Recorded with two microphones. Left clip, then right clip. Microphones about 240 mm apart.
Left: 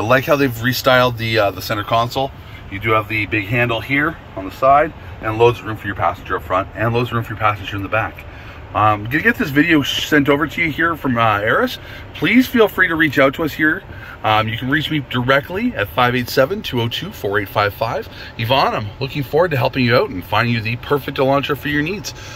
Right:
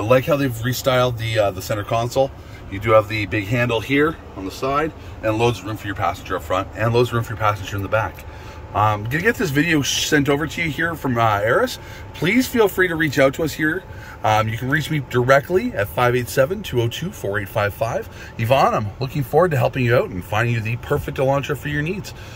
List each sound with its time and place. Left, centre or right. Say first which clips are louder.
0.0 s speech: left 3 dB; centre
5.9 s speech: left 4 dB; centre